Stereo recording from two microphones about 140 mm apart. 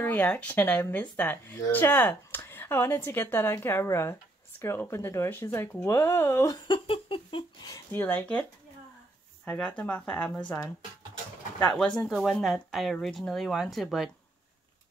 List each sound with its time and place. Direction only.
0.0 s speech: 10° left (ahead or behind)
6.7 s a sound: 40° left (ahead or behind)
7.9 s speech: 15° left (ahead or behind)
11.6 s speech: 10° left (ahead or behind)